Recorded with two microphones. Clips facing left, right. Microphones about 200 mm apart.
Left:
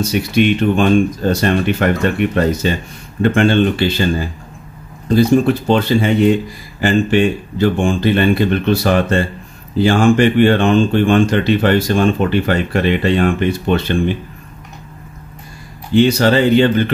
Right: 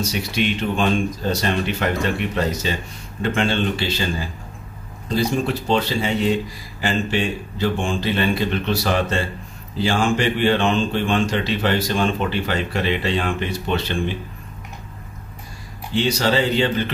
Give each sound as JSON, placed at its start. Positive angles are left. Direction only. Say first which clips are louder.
{"t": 0.1, "sound": "speech", "louder": "left 9 dB", "side_deg": 55}
{"t": 15.9, "sound": "speech", "louder": "left 8 dB", "side_deg": 55}